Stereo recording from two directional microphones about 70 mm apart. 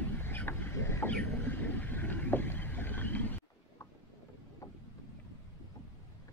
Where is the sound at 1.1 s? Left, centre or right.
Left.